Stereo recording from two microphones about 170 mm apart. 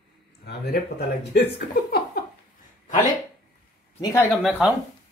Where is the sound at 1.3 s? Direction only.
70° left (ahead or behind).